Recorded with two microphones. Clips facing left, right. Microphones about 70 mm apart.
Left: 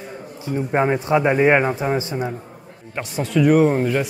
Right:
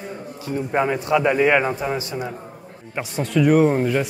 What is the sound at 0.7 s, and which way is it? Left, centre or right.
A man's voice, left.